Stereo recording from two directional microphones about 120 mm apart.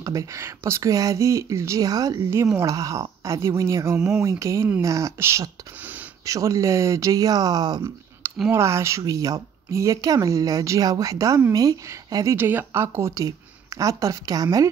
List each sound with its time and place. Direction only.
0.0 s speech: 30° right (ahead or behind)
8.5 s speech: 25° right (ahead or behind)
12.4 s speech: 15° right (ahead or behind)